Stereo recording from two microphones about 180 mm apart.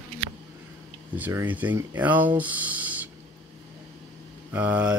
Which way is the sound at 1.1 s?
10° right (ahead or behind).